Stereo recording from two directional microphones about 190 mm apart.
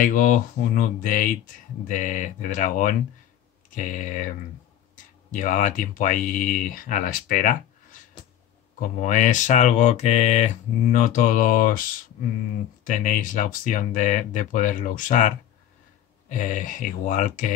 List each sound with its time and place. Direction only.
0.0 s speech: 45° left (ahead or behind)
5.3 s speech: 45° left (ahead or behind)
9.0 s speech: 40° left (ahead or behind)